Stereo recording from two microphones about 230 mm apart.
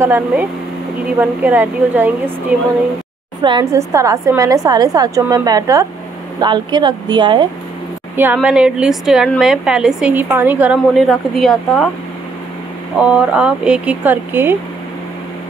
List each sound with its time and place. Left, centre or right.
0.0 s a woman's voice: centre
3.4 s a woman's voice: centre
8.2 s a woman's voice: centre
13.0 s a woman's voice: centre